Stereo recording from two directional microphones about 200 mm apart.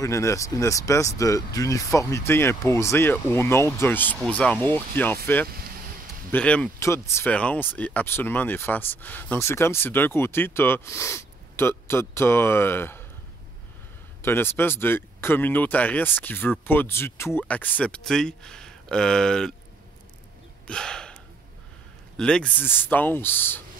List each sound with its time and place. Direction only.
0.0 s speech: 15° left (ahead or behind)
14.2 s speech: 10° left (ahead or behind)
20.6 s a sound: 5° left (ahead or behind)
22.1 s speech: 5° left (ahead or behind)